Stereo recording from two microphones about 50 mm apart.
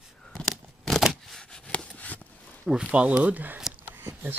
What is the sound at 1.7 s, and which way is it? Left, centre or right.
Chopping, left.